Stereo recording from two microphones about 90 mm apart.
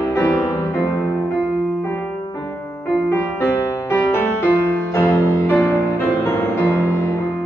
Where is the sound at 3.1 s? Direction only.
25° left (ahead or behind).